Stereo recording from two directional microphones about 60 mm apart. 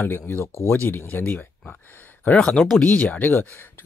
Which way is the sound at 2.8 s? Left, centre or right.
Left.